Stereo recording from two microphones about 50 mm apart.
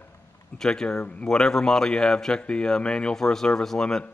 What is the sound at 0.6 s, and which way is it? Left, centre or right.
Speech, centre.